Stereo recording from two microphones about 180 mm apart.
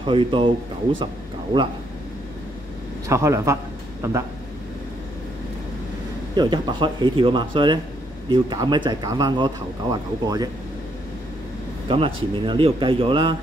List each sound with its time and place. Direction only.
0.0 s speech: 30° right (ahead or behind)
3.1 s a man's voice: 15° right (ahead or behind)
6.3 s speech: 25° right (ahead or behind)
11.9 s speech: 30° right (ahead or behind)